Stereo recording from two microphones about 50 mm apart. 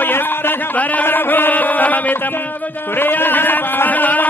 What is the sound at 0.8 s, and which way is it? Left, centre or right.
Music, left.